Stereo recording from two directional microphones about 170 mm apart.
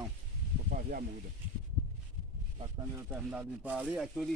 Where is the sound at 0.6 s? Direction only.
55° right (ahead or behind).